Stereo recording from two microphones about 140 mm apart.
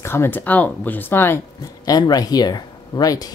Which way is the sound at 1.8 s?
25° left (ahead or behind).